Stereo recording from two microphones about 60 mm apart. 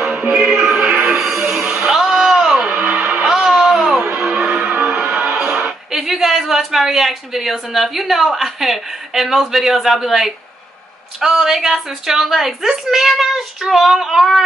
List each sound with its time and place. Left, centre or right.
0.0 s music: centre
1.1 s music: centre
2.6 s music: right
3.2 s a sound: centre
4.0 s music: centre
5.9 s a woman's voice: centre